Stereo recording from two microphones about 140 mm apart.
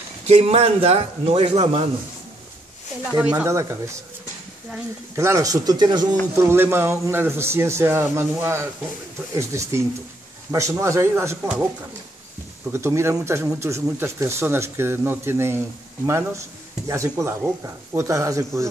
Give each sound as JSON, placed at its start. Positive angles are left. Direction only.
{"t": 0.3, "sound": "a man's voice", "side_deg": -45}
{"t": 3.1, "sound": "speech", "side_deg": -10}
{"t": 5.1, "sound": "speech", "side_deg": -20}
{"t": 6.3, "sound": "a man's voice", "side_deg": -20}
{"t": 12.7, "sound": "a man's voice", "side_deg": -20}